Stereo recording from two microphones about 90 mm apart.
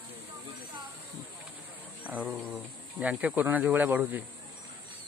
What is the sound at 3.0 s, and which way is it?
Speech, 15° right (ahead or behind).